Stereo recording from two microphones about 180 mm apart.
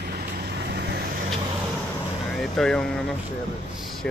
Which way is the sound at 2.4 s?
Centre (ahead or behind).